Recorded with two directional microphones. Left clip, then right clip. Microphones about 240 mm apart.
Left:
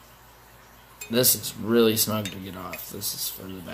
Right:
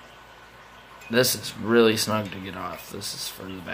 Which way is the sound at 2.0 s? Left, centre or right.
Centre.